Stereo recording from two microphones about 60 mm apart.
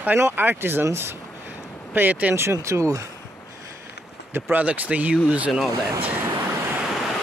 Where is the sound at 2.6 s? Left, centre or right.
Right.